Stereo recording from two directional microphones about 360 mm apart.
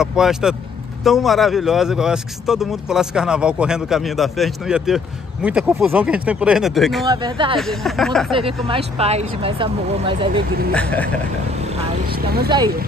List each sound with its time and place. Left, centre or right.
0.0 s speech: centre
7.1 s speech: centre
7.5 s speech: centre
8.3 s speech: centre
10.7 s speech: centre
12.4 s speech: centre